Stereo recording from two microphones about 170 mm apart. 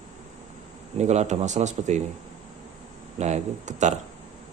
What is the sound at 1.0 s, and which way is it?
Speech, 40° right (ahead or behind).